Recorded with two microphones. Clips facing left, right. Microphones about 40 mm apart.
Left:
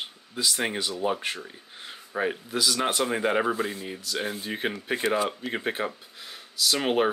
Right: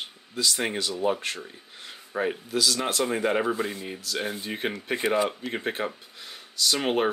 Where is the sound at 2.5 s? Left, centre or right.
Centre.